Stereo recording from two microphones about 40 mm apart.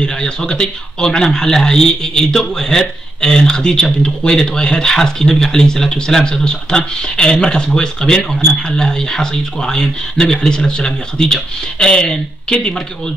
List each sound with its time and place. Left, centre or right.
0.0 s a man's voice: left